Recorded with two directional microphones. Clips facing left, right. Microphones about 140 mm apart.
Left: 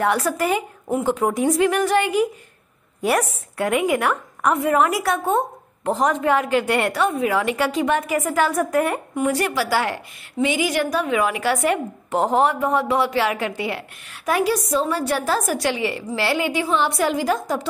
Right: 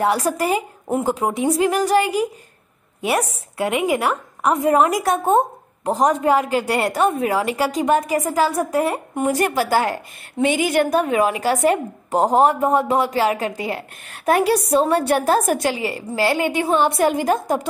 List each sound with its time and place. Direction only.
0.0 s a woman's voice: 35° right (ahead or behind)
3.0 s a woman's voice: 25° right (ahead or behind)
9.2 s a woman's voice: 45° right (ahead or behind)
15.7 s a woman's voice: 40° right (ahead or behind)